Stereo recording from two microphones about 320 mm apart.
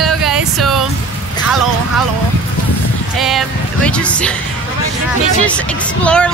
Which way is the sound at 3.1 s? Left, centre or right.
Centre.